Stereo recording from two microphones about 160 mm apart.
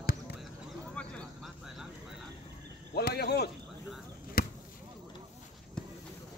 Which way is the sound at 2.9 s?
85° left.